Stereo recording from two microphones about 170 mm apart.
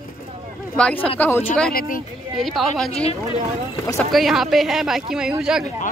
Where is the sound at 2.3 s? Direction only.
Centre (ahead or behind).